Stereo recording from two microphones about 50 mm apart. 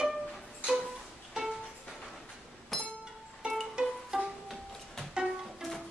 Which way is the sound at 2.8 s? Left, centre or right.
Centre.